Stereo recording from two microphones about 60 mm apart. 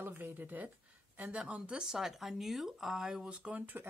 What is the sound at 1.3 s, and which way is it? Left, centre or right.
Speech, centre.